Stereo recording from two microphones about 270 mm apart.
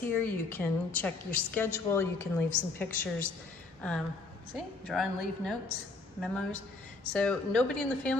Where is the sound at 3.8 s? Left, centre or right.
Centre.